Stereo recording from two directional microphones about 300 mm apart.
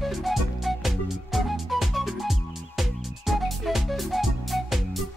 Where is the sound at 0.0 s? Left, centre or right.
Centre.